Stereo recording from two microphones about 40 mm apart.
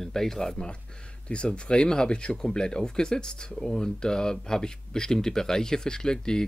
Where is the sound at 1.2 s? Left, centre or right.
Left.